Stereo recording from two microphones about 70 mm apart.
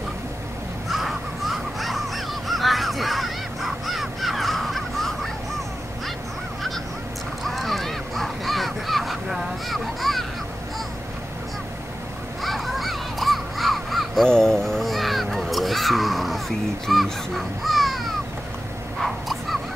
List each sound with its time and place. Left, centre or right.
0.8 s crow: centre
7.4 s crow: centre
12.4 s crow: centre
18.9 s a sound: centre